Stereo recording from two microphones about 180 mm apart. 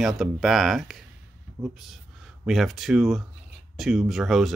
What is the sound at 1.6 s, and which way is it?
Speech, 15° right (ahead or behind).